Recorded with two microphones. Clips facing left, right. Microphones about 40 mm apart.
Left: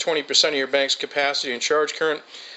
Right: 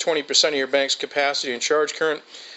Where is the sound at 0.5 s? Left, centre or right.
Centre.